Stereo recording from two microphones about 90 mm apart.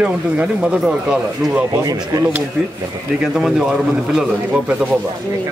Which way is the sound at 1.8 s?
40° right (ahead or behind).